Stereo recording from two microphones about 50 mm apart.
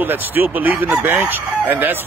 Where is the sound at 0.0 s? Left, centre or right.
Right.